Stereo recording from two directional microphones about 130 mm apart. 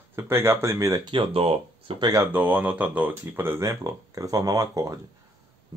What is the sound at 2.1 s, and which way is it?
Speech, 15° right (ahead or behind).